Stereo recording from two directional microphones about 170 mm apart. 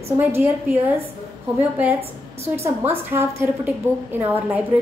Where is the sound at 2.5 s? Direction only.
15° right (ahead or behind).